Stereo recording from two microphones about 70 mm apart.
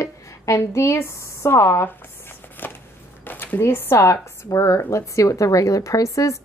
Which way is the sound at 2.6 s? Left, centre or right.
Left.